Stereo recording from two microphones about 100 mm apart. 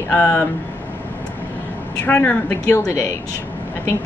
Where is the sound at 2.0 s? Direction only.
15° left (ahead or behind).